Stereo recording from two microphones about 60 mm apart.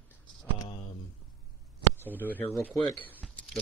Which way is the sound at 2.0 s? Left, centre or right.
Left.